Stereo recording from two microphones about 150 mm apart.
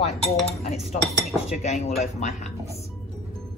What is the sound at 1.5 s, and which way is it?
Speech, 45° left (ahead or behind).